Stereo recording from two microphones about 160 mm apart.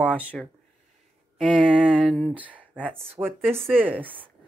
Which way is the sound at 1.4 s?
5° right (ahead or behind).